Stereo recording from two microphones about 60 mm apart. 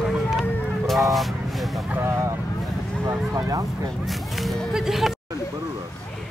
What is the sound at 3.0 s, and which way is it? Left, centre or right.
Speech, right.